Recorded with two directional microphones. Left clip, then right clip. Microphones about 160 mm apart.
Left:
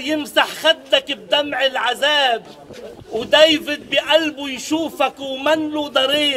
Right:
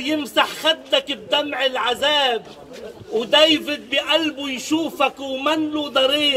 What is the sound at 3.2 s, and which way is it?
A man's voice, 25° left (ahead or behind).